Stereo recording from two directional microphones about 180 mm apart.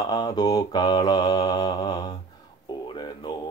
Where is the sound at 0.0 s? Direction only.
20° left (ahead or behind).